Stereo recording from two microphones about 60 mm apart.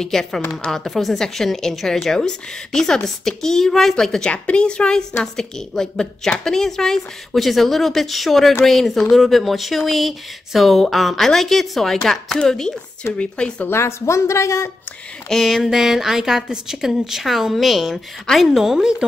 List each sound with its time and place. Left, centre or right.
0.0 s a woman's voice: centre
13.7 s a woman's voice: left
15.2 s a woman's voice: centre